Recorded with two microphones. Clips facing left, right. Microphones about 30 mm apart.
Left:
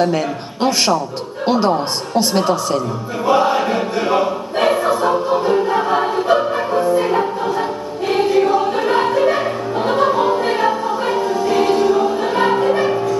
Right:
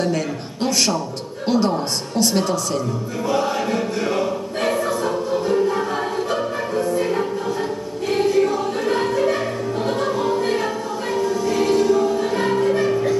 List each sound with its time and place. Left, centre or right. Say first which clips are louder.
0.0 s a woman's voice: left 5 dB; left
3.3 s choir: left 6 dB; left
8.1 s music: left 4 dB; left